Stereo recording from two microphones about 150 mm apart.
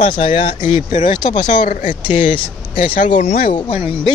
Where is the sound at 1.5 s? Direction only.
55° left (ahead or behind).